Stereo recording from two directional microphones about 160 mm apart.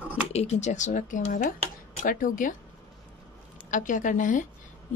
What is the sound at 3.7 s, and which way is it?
Speech, 55° left (ahead or behind).